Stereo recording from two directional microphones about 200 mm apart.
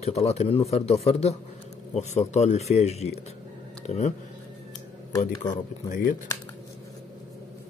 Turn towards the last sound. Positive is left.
turn(degrees=40)  # may be behind; listen again after turning